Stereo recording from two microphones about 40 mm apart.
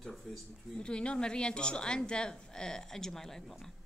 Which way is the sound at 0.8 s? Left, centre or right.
Left.